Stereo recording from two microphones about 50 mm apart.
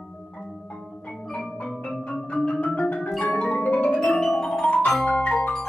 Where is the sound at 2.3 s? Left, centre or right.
Left.